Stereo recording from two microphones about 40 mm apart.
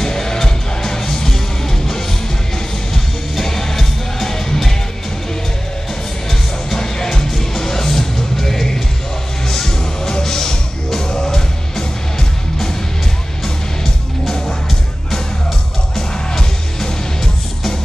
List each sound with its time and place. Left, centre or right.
0.0 s music: centre
2.9 s music: centre
6.8 s music: centre